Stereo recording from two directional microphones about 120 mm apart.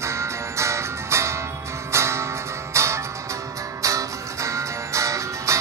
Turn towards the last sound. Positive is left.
turn(degrees=-25)  # may be behind; listen again after turning